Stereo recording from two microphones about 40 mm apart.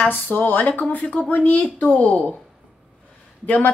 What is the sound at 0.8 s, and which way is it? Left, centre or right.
Speech, left.